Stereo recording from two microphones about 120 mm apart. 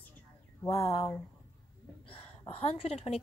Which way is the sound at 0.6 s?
25° left (ahead or behind).